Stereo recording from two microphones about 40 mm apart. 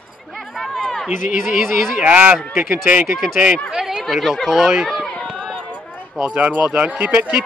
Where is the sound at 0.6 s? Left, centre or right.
Centre.